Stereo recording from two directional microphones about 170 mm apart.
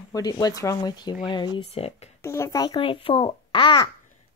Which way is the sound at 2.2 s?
15° left (ahead or behind).